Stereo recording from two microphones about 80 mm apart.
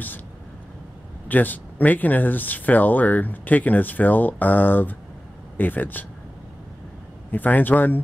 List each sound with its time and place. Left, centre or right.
1.3 s speech: left
7.2 s speech: left